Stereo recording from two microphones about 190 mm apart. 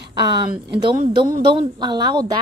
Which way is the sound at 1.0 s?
45° right (ahead or behind).